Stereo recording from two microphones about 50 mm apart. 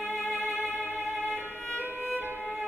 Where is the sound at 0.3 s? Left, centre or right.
Right.